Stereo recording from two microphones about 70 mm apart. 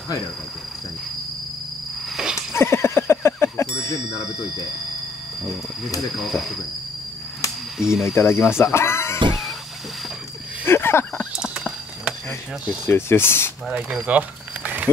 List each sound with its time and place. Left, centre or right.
2.2 s horse: centre
2.6 s bicycle bell: left
5.9 s speech: centre
7.8 s speech: centre
8.1 s speech: left
10.6 s a sound: left
11.3 s a sound: centre
12.8 s speech: left
13.7 s speech: centre
14.0 s a sound: right